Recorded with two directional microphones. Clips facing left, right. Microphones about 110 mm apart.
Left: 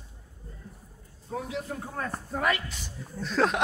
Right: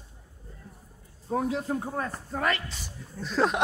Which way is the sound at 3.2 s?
5° right (ahead or behind).